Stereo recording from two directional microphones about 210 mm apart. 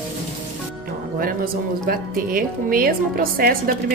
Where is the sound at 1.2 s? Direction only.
45° right (ahead or behind).